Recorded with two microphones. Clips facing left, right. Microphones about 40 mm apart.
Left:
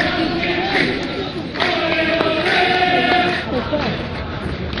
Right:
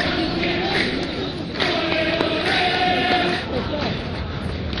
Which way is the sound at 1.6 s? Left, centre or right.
Centre.